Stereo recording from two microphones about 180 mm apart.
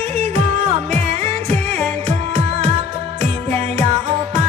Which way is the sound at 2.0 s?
35° right (ahead or behind).